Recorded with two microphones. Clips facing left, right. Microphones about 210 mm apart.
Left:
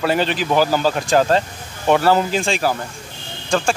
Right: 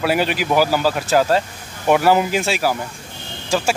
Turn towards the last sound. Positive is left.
turn(degrees=-5)  # may be behind; listen again after turning